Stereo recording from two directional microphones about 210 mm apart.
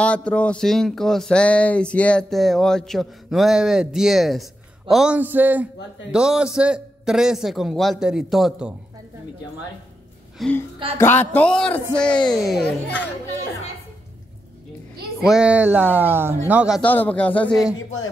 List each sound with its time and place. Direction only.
0.0 s speech: 5° left (ahead or behind)
10.4 s speech: centre (ahead or behind)
12.8 s a child's voice: 55° left (ahead or behind)
15.1 s speech: centre (ahead or behind)
16.8 s speech: 10° left (ahead or behind)